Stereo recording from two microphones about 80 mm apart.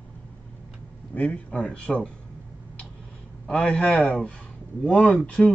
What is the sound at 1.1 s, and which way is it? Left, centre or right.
Speech, centre.